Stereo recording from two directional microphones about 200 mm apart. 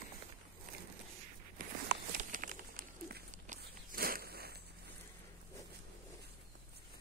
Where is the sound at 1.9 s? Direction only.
45° right (ahead or behind).